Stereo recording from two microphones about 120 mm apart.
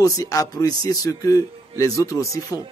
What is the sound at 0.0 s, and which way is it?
A man's voice, 30° left (ahead or behind).